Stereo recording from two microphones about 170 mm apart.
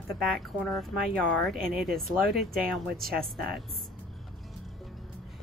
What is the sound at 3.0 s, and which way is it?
Speech, 60° right (ahead or behind).